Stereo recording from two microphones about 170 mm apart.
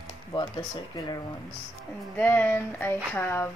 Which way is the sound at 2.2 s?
10° left (ahead or behind).